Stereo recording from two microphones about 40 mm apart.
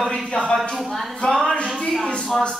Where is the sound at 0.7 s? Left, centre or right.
Centre.